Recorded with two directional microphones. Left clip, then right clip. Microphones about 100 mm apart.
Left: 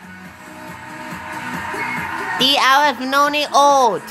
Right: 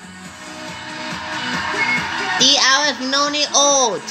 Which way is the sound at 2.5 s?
30° left (ahead or behind).